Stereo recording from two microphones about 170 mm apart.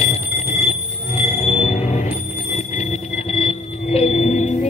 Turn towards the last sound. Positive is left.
turn(degrees=35)  # may be behind; listen again after turning